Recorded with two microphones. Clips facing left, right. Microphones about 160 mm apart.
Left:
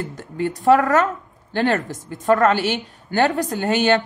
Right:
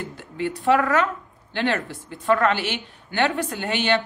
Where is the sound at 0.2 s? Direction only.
45° left (ahead or behind).